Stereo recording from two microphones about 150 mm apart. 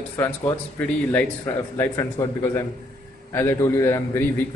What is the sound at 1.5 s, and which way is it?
A man's voice, 20° left (ahead or behind).